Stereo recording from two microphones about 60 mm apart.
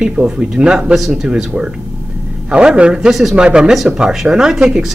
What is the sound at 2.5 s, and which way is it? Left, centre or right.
Speech, centre.